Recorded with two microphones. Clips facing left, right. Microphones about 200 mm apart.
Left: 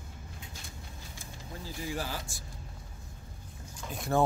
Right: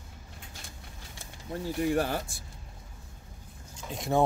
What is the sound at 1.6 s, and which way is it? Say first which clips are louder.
Speech: right 10 dB; 65° right (ahead or behind).